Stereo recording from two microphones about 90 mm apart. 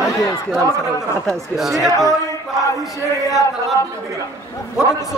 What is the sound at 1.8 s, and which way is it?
Speech, 40° left (ahead or behind).